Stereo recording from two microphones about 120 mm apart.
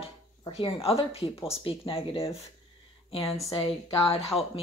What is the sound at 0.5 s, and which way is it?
Speech, 55° left (ahead or behind).